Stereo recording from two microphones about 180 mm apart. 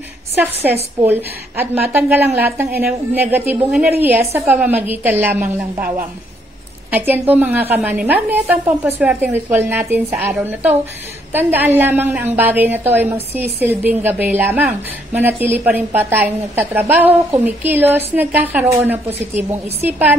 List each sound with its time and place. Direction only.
0.4 s a woman's voice: 10° right (ahead or behind)
5.8 s a woman's voice: 50° right (ahead or behind)
6.9 s a woman's voice: 10° right (ahead or behind)